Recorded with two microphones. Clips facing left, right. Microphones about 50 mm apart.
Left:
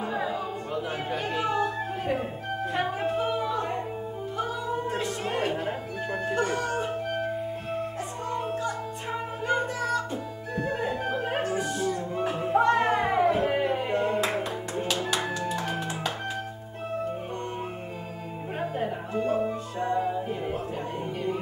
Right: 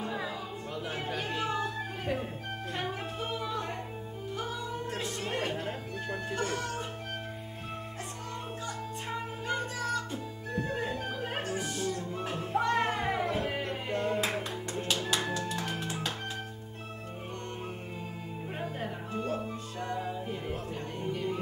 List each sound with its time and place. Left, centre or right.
0.0 s music: centre
4.8 s music: centre
9.5 s music: centre
10.5 s organ: left
10.8 s music: centre
18.6 s music: centre
19.4 s music: left
20.0 s music: centre